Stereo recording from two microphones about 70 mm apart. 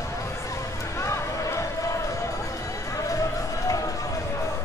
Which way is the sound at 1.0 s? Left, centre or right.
Left.